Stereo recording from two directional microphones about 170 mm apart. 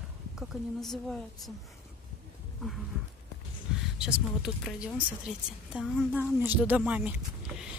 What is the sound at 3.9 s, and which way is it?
A woman's voice, 5° right (ahead or behind).